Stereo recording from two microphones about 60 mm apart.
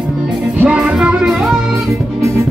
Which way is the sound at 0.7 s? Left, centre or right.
Centre.